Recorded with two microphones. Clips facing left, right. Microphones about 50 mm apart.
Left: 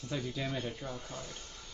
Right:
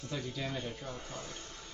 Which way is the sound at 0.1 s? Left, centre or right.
Centre.